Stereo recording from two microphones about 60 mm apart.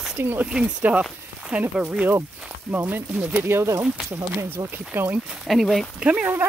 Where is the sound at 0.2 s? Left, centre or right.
Right.